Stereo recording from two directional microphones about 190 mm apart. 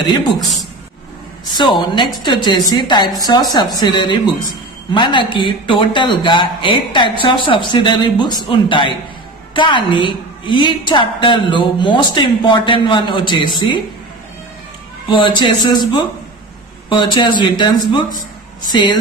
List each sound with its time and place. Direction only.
1.6 s a woman's voice: 25° left (ahead or behind)
15.0 s a woman's voice: 25° left (ahead or behind)